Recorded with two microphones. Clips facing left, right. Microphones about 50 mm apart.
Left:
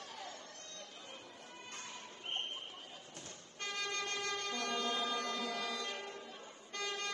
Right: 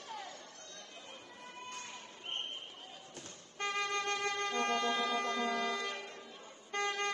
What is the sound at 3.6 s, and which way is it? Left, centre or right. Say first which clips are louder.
Vehicle: right 5 dB; right.